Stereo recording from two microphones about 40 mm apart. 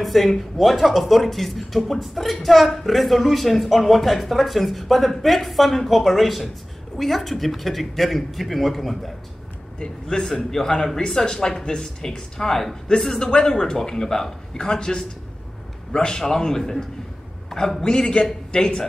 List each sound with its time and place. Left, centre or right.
0.0 s a woman's voice: centre
9.8 s a woman's voice: centre